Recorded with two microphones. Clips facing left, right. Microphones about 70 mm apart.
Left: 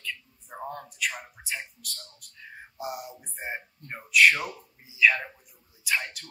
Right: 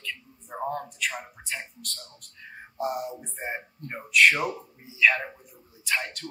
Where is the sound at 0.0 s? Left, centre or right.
Centre.